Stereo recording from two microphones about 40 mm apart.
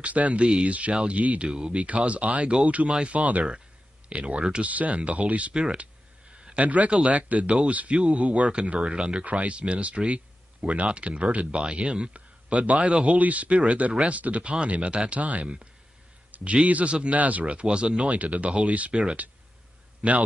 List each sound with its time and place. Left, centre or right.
0.0 s speech: right
4.6 s speech: right
6.6 s speech: right
9.2 s speech: right
15.4 s speech: right
16.3 s a sound: right
16.6 s speech: right